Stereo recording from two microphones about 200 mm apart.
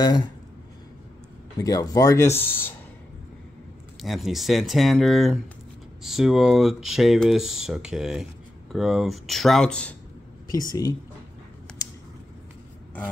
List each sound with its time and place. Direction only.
0.0 s speech: 20° left (ahead or behind)
1.6 s speech: 15° left (ahead or behind)
4.0 s speech: centre (ahead or behind)
10.5 s speech: 20° left (ahead or behind)